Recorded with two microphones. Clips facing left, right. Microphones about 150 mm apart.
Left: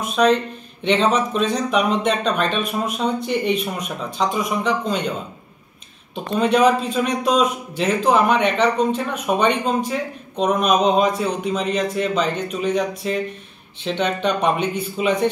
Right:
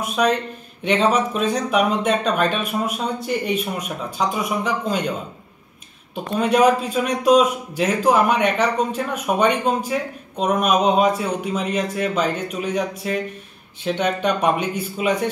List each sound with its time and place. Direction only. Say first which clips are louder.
0.0 s a man's voice: left 3 dB; 10° right (ahead or behind)
6.3 s a man's voice: even; 10° right (ahead or behind)